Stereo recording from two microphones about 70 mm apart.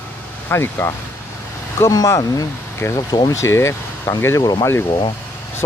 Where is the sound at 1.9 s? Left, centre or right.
Left.